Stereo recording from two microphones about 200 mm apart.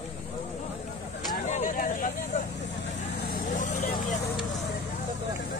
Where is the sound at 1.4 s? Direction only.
40° left (ahead or behind).